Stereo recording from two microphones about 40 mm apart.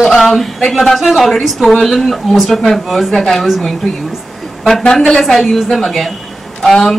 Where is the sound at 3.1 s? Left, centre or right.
Centre.